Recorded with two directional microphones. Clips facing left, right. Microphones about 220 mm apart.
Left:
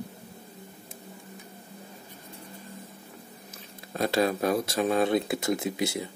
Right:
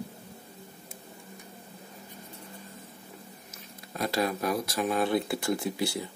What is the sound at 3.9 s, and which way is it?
Speech, 25° left (ahead or behind).